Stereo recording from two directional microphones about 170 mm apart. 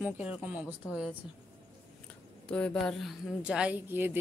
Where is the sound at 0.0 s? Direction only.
5° right (ahead or behind).